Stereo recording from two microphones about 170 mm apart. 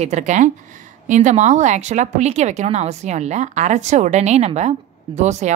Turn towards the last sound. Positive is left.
turn(degrees=-45)  # may be behind; listen again after turning